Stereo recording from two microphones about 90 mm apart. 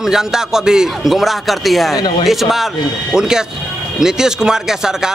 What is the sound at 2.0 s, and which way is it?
Speech, 55° left (ahead or behind).